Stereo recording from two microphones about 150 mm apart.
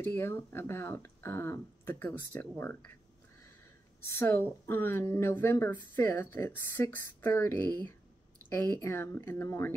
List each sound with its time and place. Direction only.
0.0 s speech: 15° left (ahead or behind)
4.0 s speech: 15° left (ahead or behind)